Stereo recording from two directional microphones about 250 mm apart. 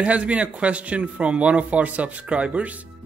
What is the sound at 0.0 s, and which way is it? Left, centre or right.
A man's voice, centre.